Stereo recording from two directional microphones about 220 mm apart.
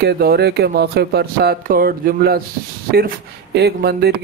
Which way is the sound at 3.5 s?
45° right (ahead or behind).